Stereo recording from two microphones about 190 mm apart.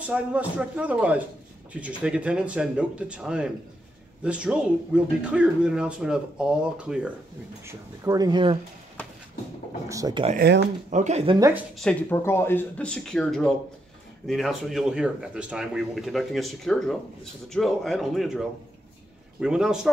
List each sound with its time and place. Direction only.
0.0 s speech: 5° right (ahead or behind)
7.6 s speech: 15° right (ahead or behind)
9.8 s speech: 20° right (ahead or behind)
10.3 s speech: 60° right (ahead or behind)
10.9 s speech: 40° right (ahead or behind)
11.3 s speech: 15° right (ahead or behind)
11.8 s speech: 10° left (ahead or behind)